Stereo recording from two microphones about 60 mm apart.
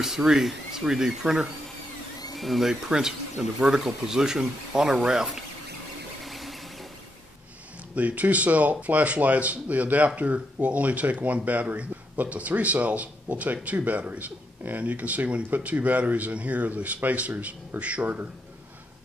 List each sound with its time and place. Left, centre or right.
0.0 s speech: centre
6.2 s a sound: centre
7.9 s speech: right